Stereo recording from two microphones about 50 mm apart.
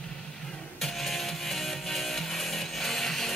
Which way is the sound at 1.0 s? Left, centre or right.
Centre.